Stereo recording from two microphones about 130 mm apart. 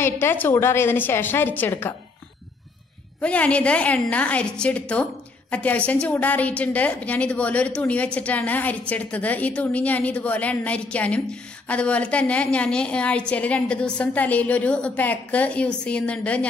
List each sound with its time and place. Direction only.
0.0 s a woman's voice: 15° left (ahead or behind)
3.2 s a woman's voice: 10° left (ahead or behind)